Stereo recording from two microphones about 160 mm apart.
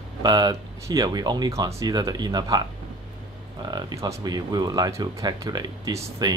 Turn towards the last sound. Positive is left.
turn(degrees=-25)  # may be behind; listen again after turning